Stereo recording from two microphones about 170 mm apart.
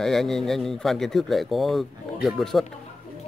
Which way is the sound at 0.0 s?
Centre (ahead or behind).